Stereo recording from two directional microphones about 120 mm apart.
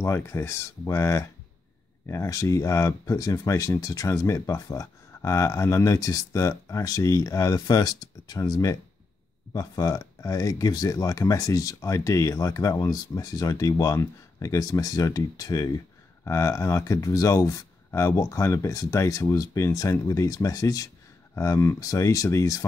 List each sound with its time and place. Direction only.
0.0 s speech: 20° left (ahead or behind)